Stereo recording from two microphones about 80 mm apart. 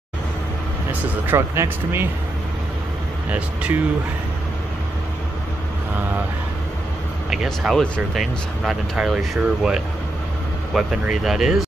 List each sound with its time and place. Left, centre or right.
1.3 s speech: right
3.3 s speech: centre
7.4 s speech: centre